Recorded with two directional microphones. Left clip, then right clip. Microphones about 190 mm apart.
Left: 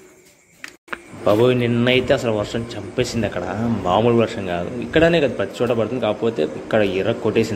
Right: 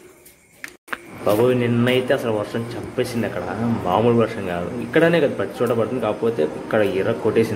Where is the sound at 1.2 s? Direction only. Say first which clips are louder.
Left 2 dB; 20° left (ahead or behind).